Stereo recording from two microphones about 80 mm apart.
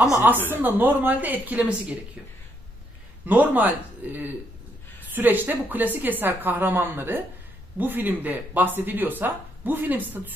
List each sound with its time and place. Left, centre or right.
0.5 s speech: right
3.3 s speech: right